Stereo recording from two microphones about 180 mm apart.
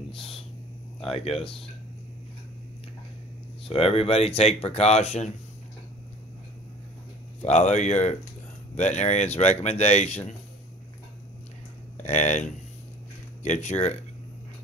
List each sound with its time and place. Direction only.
1.0 s speech: 30° left (ahead or behind)
3.6 s speech: 35° left (ahead or behind)
7.4 s speech: 40° left (ahead or behind)
12.0 s speech: 40° left (ahead or behind)